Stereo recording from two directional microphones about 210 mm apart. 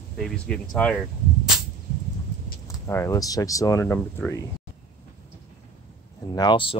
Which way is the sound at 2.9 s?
15° left (ahead or behind).